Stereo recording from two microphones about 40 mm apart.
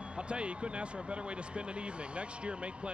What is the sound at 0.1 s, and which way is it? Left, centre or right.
Speech, right.